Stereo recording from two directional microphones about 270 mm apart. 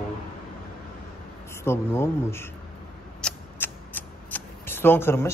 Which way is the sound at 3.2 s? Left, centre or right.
Centre.